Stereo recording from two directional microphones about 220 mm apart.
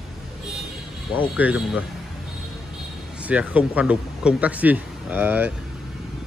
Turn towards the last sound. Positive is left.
turn(degrees=-10)  # may be behind; listen again after turning